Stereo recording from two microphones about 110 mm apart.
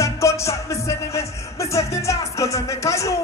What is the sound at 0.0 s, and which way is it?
Music, 25° left (ahead or behind).